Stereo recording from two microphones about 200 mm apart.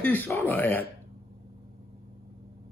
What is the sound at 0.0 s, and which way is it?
Speech, 10° left (ahead or behind).